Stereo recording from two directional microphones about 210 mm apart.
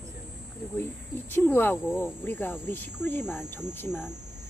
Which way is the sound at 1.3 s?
10° left (ahead or behind).